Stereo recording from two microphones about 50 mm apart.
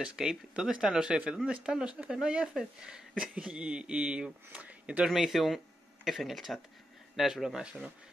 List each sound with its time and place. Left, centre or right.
0.0 s speech: centre
5.1 s speech: centre